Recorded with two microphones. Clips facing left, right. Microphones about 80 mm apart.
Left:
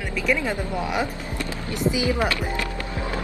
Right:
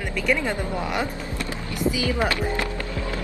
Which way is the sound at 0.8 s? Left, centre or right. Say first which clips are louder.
Left 1 dB; centre.